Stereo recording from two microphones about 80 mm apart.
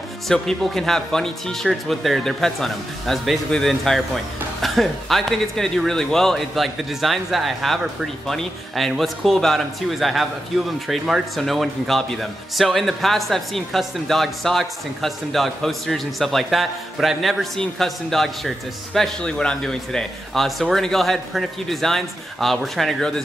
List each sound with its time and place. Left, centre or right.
0.3 s a man's voice: centre